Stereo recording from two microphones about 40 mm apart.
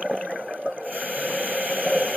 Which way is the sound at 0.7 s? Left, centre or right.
Right.